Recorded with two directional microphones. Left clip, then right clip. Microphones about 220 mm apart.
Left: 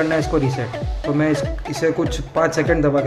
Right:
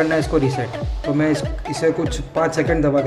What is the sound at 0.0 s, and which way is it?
Speech, centre (ahead or behind).